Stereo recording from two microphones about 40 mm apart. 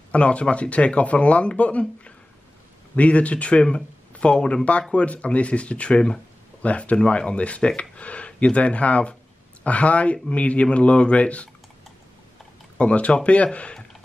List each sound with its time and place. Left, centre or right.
0.1 s speech: left
6.6 s speech: left
12.7 s speech: left